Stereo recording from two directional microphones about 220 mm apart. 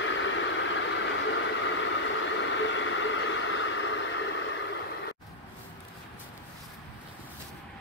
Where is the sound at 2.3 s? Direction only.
55° left (ahead or behind).